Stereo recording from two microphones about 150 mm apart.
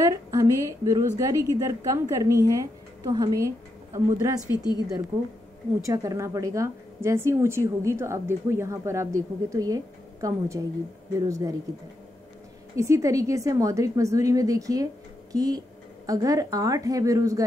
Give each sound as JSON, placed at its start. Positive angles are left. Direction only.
{"t": 0.0, "sound": "a woman's voice", "side_deg": -20}
{"t": 12.7, "sound": "a woman's voice", "side_deg": -20}